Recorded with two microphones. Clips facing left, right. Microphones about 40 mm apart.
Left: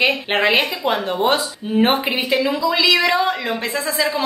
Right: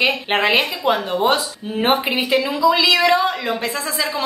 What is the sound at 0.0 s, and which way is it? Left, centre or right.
A woman's voice, centre.